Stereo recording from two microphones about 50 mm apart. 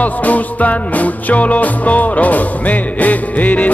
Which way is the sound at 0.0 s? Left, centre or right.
Left.